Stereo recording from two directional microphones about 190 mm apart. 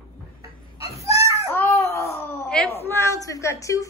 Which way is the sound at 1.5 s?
15° left (ahead or behind).